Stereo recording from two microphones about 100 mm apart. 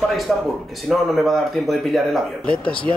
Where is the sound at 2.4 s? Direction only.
10° left (ahead or behind).